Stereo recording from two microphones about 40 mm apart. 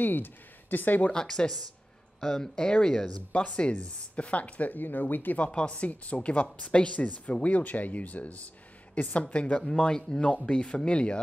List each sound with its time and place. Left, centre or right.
0.0 s speech: left
1.1 s speech: centre
3.4 s speech: left
5.4 s speech: left
9.7 s speech: centre